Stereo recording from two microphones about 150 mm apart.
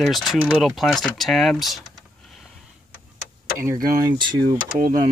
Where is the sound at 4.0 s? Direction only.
30° right (ahead or behind).